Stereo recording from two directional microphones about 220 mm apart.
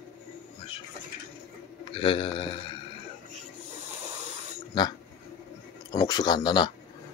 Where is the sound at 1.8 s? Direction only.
25° left (ahead or behind).